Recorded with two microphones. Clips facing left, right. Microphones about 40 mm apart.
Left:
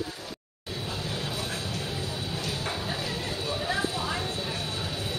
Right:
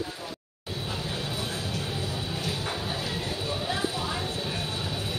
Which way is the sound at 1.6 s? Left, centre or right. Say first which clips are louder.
Right 1 dB; right.